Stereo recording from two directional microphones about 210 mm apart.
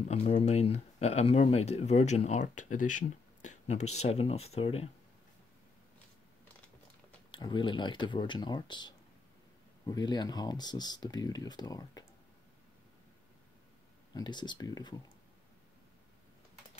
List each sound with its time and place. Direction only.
0.1 s speech: 30° left (ahead or behind)
7.2 s speech: 20° left (ahead or behind)
14.1 s speech: 20° left (ahead or behind)